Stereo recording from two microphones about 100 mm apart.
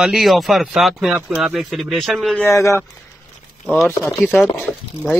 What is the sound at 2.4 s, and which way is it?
Speech, 30° left (ahead or behind).